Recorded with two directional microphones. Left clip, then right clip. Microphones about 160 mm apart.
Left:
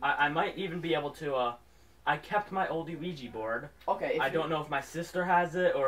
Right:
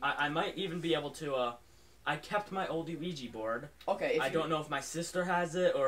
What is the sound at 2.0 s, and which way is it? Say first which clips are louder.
Speech: left 4 dB; 25° right (ahead or behind).